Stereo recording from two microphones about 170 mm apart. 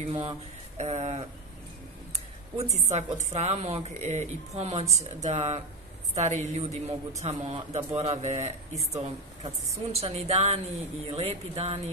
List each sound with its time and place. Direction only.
0.0 s speech: 30° right (ahead or behind)
2.5 s a woman's voice: 40° right (ahead or behind)